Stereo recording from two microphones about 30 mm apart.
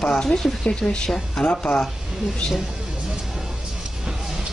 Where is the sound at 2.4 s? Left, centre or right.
Left.